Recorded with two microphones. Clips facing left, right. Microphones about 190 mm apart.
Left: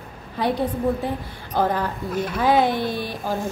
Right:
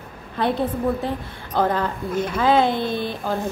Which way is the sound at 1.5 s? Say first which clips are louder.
Right 1 dB; 10° left (ahead or behind).